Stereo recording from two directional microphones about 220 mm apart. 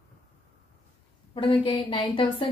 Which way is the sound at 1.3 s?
25° left (ahead or behind).